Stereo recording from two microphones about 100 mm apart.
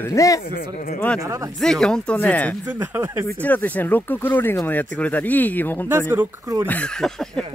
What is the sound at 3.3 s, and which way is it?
Speech, 15° left (ahead or behind).